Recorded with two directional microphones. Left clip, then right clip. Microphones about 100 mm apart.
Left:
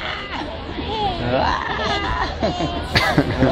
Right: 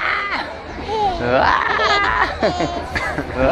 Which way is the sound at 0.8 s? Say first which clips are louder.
Right 4 dB; 25° right (ahead or behind).